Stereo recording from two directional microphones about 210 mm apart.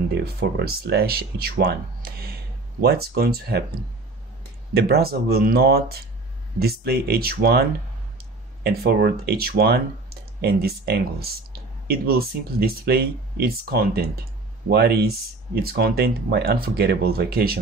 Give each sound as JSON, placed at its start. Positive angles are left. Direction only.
{"t": 0.2, "sound": "speech", "side_deg": -50}
{"t": 4.7, "sound": "speech", "side_deg": -50}
{"t": 8.6, "sound": "speech", "side_deg": -50}